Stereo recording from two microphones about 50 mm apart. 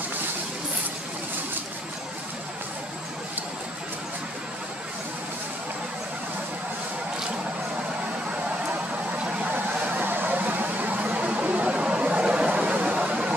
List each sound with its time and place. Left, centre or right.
9.8 s vehicle: right